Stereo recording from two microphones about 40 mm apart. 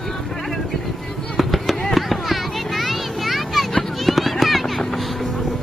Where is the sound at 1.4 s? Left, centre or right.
Centre.